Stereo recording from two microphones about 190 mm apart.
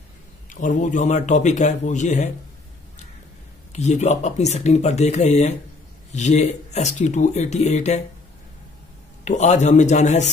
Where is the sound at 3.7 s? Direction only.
35° left (ahead or behind).